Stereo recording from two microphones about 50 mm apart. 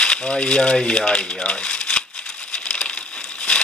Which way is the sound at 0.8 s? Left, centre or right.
Centre.